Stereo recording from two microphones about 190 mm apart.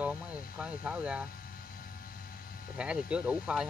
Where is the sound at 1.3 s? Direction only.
50° left (ahead or behind).